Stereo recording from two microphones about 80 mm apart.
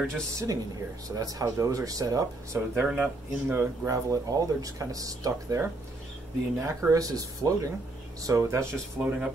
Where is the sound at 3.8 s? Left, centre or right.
Right.